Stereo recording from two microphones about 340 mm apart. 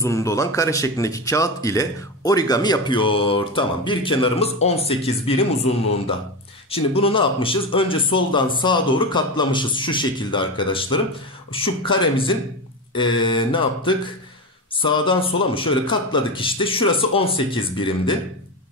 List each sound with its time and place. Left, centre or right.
0.0 s speech: centre
6.7 s speech: centre